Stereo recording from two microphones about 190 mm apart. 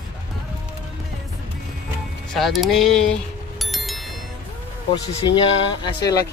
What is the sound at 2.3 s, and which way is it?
Music, centre (ahead or behind).